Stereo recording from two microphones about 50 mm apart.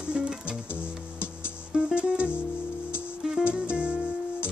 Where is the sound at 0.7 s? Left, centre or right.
Left.